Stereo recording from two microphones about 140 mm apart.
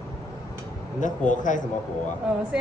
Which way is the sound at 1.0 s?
65° left (ahead or behind).